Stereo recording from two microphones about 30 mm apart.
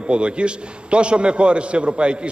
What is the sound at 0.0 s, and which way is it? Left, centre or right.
A man's voice, right.